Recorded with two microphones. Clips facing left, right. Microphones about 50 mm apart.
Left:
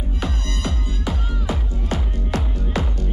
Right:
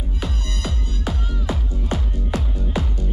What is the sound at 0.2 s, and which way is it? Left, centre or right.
Music, centre.